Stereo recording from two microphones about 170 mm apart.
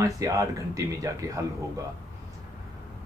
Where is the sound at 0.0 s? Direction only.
20° right (ahead or behind).